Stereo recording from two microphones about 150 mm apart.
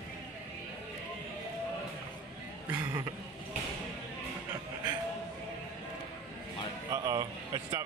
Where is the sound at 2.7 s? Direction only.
10° right (ahead or behind).